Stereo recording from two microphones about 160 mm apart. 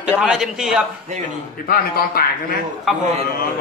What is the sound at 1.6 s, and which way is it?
Speech, 65° left (ahead or behind).